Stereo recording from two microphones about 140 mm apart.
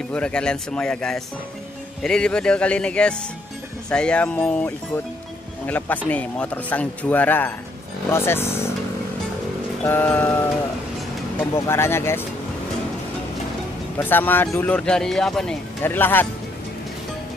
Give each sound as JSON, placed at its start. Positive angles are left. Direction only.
{"t": 0.1, "sound": "speech", "side_deg": 5}
{"t": 5.7, "sound": "speech", "side_deg": 10}
{"t": 9.8, "sound": "speech", "side_deg": 15}
{"t": 11.5, "sound": "speech", "side_deg": 20}
{"t": 13.9, "sound": "speech", "side_deg": 15}
{"t": 15.8, "sound": "speech", "side_deg": 15}